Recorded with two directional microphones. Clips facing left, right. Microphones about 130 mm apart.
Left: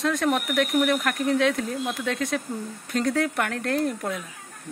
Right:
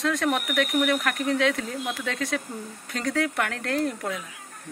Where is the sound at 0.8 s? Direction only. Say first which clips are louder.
Left 1 dB; 20° left (ahead or behind).